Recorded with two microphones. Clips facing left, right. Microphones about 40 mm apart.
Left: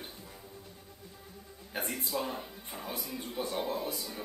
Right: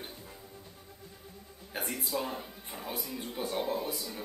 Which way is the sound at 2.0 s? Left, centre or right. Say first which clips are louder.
Even; centre.